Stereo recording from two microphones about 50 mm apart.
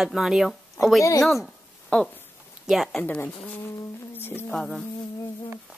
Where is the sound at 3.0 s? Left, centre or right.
Left.